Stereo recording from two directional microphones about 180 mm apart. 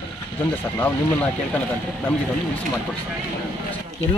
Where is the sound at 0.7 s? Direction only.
10° left (ahead or behind).